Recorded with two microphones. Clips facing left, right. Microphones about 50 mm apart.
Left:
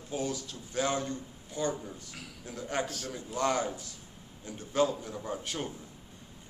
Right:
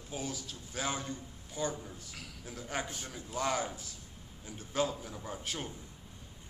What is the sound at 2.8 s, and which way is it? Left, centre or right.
Speech, right.